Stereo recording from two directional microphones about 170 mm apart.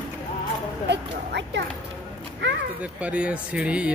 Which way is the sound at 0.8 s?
90° right.